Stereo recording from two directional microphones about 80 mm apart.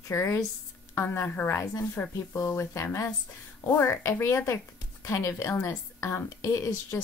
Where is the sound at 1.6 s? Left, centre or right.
Left.